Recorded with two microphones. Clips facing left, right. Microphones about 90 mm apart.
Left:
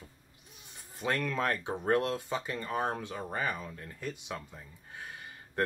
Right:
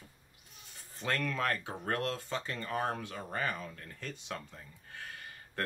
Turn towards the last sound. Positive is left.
turn(degrees=20)  # may be behind; listen again after turning